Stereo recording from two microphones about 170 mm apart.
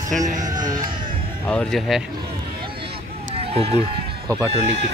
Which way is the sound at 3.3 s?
35° right (ahead or behind).